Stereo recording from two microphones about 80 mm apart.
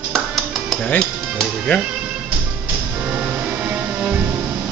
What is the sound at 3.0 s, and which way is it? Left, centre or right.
Music, centre.